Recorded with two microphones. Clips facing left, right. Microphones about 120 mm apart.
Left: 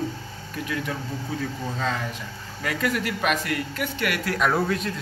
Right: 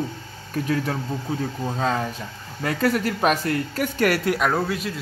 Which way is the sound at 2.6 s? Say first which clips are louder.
Right 4 dB; 35° right (ahead or behind).